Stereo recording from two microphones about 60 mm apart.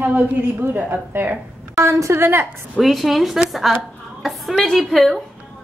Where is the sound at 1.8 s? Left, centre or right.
Right.